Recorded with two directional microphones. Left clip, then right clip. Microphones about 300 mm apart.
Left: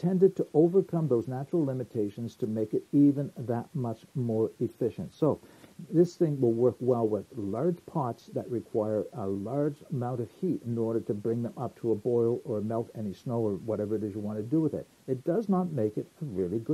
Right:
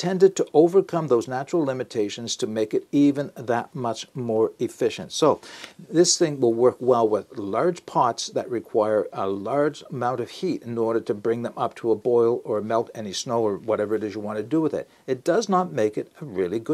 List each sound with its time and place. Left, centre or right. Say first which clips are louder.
0.0 s speech: right 6 dB; centre
4.8 s speech: right 9 dB; centre
6.4 s speech: right 6 dB; centre